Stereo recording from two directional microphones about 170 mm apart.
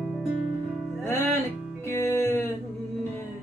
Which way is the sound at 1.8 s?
15° left (ahead or behind).